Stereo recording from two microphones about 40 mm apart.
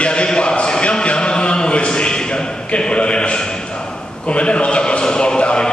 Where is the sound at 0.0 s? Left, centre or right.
Left.